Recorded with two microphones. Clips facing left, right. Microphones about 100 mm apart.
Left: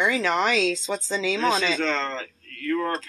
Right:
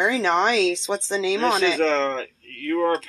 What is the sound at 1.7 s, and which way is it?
Speech, 55° right (ahead or behind).